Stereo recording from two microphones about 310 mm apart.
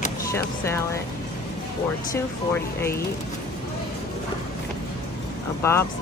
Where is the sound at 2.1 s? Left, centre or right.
Centre.